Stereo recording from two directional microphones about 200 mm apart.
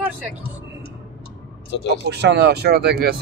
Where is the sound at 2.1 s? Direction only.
60° right (ahead or behind).